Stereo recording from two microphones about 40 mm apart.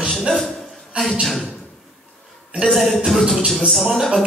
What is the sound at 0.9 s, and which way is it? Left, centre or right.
Speech, right.